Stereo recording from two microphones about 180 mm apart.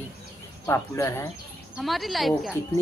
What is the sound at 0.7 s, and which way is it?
Speech, 15° left (ahead or behind).